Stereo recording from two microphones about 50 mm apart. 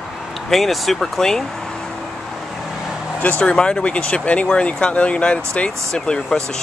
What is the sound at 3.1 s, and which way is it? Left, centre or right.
Speech, left.